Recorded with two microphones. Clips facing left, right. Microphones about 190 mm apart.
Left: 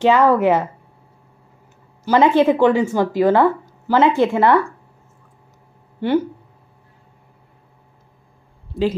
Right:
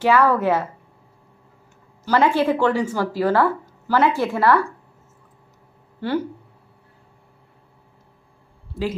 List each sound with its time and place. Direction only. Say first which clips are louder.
0.0 s speech: left 3 dB; 20° left (ahead or behind)
2.0 s a woman's voice: left 4 dB; 20° left (ahead or behind)
5.9 s speech: left 5 dB; 20° left (ahead or behind)